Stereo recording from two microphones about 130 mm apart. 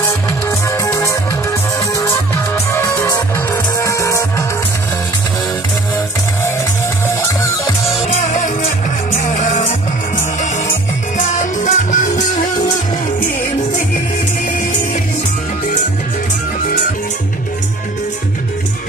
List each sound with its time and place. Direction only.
0.5 s music: 20° left (ahead or behind)
7.1 s music: 20° left (ahead or behind)
8.1 s music: 70° left (ahead or behind)
11.1 s music: 70° left (ahead or behind)